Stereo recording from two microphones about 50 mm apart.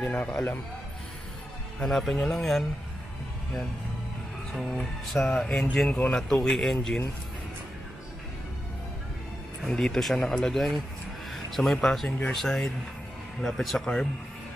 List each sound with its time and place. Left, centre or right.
0.0 s speech: left
1.9 s speech: centre
4.6 s speech: centre
9.7 s speech: centre